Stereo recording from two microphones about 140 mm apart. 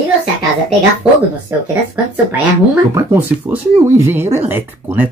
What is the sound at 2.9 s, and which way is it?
Speech, 15° right (ahead or behind).